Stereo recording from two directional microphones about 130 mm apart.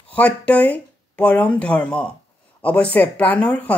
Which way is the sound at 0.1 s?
10° left (ahead or behind).